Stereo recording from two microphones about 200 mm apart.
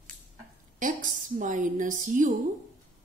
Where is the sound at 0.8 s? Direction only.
40° right (ahead or behind).